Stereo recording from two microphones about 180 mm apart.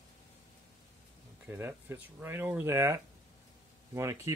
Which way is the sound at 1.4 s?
15° right (ahead or behind).